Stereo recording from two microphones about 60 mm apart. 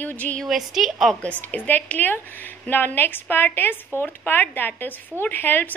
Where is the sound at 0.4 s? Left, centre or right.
Centre.